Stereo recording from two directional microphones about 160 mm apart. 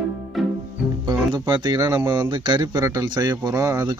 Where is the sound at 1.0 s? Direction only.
25° right (ahead or behind).